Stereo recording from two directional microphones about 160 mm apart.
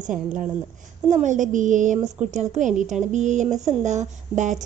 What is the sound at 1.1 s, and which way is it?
A woman's voice, 50° right (ahead or behind).